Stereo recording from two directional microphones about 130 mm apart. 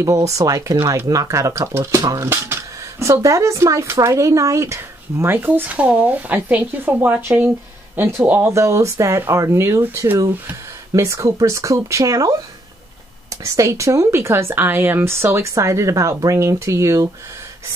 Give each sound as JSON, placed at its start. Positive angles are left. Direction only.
{"t": 0.0, "sound": "speech", "side_deg": -25}
{"t": 13.4, "sound": "speech", "side_deg": -25}